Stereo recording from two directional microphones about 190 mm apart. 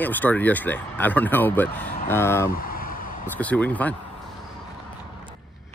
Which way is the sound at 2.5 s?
50° left (ahead or behind).